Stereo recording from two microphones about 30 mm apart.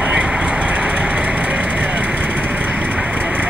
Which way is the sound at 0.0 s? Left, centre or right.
Right.